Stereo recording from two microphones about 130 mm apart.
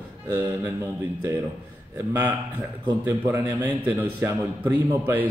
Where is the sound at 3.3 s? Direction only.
15° right (ahead or behind).